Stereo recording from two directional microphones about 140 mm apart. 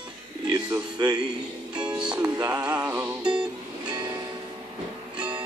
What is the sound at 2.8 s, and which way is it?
Music, 15° right (ahead or behind).